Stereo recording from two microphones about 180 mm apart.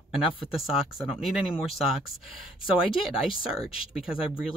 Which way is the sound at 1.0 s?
Centre (ahead or behind).